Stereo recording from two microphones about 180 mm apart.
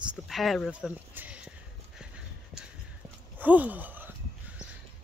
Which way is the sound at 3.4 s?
10° right (ahead or behind).